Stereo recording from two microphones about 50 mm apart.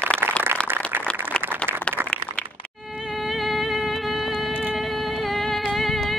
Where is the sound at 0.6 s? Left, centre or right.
Right.